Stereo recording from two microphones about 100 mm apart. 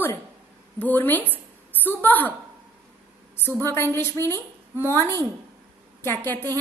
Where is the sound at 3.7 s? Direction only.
25° left (ahead or behind).